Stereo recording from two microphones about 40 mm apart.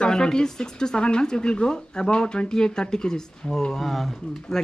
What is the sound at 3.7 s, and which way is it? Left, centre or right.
Speech, centre.